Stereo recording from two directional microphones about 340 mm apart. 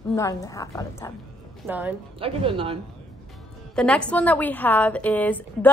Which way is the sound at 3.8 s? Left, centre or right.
Centre.